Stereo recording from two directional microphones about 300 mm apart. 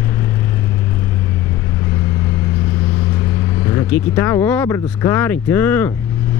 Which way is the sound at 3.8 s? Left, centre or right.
Centre.